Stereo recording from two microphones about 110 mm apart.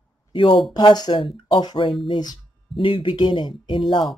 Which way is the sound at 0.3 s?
50° left (ahead or behind).